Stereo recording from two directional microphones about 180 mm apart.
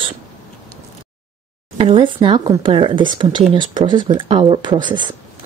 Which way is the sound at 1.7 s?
30° right (ahead or behind).